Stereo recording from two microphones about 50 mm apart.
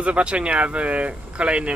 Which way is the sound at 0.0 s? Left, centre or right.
Right.